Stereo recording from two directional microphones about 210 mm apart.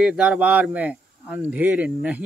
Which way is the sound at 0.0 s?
5° right (ahead or behind).